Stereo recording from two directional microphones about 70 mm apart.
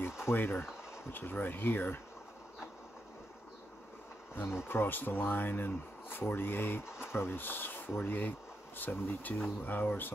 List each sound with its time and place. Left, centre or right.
0.3 s speech: left
4.6 s speech: left